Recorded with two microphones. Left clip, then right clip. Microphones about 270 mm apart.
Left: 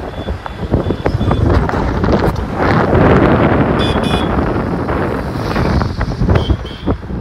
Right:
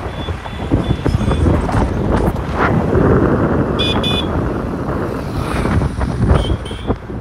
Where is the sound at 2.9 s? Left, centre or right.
Left.